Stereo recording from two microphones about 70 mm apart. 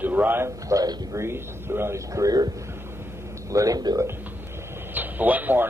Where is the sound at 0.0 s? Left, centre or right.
Right.